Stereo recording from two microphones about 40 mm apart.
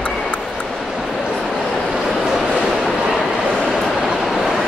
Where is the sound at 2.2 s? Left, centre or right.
Centre.